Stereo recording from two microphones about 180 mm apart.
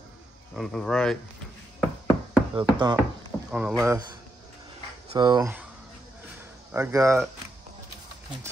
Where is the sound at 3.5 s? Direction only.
5° right (ahead or behind).